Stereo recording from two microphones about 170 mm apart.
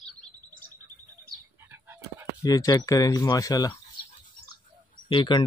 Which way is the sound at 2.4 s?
20° left (ahead or behind).